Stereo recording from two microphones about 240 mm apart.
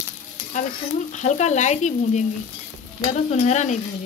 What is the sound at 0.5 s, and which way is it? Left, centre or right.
Speech, left.